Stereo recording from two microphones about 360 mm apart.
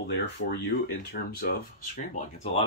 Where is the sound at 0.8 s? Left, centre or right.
Left.